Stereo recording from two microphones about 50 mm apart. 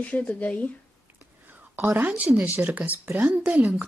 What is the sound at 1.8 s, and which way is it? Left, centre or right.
Speech, right.